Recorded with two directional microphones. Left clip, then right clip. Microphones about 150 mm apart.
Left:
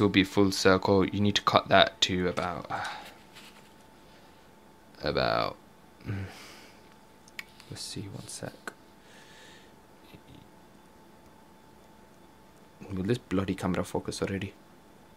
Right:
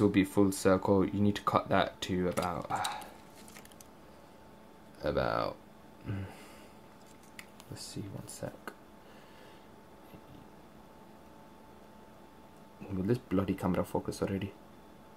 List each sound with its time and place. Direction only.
0.0 s speech: 15° left (ahead or behind); by 3.0 s 5° right (ahead or behind)
4.9 s speech: 20° left (ahead or behind)
7.3 s speech: 15° left (ahead or behind)
12.8 s speech: 10° left (ahead or behind)